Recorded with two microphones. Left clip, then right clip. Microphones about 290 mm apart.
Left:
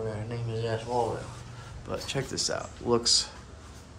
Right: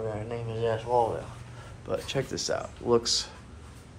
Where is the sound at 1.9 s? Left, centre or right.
Centre.